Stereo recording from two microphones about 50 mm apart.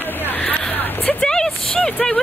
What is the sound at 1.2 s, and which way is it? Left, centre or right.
Speech, centre.